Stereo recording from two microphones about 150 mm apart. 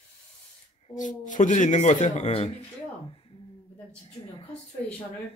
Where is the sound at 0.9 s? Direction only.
60° left (ahead or behind); by 2.6 s 45° left (ahead or behind).